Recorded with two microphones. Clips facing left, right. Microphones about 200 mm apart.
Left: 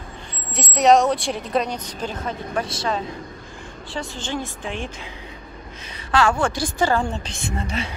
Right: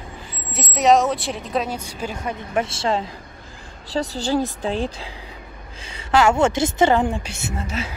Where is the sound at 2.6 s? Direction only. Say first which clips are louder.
Right 3 dB; 25° right (ahead or behind).